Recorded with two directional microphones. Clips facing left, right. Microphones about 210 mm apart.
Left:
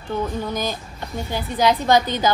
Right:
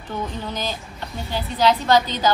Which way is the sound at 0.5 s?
15° left (ahead or behind).